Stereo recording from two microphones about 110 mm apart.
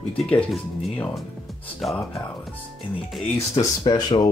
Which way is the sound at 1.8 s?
Centre (ahead or behind).